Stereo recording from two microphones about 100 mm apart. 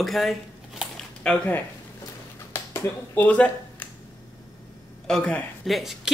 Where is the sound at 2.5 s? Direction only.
25° left (ahead or behind).